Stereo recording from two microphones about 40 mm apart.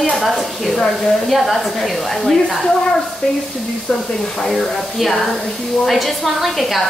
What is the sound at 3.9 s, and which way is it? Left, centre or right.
Speech, left.